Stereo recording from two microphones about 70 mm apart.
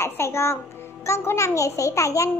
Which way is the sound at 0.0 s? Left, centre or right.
Left.